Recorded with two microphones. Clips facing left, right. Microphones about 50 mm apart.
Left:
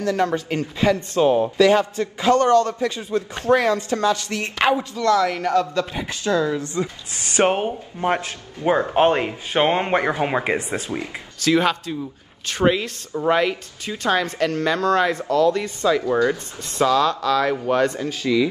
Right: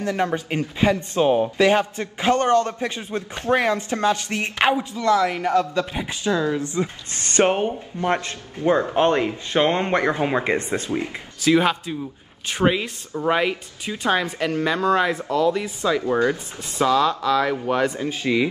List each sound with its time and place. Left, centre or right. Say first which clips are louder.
0.0 s speech: left 2 dB; right
1.6 s speech: left 2 dB; right
4.9 s speech: left 1 dB; centre
7.2 s speech: even; centre
11.4 s speech: even; centre
17.5 s speech: left 2 dB; centre
17.8 s speech: left 1 dB; centre
18.2 s speech: left 2 dB; right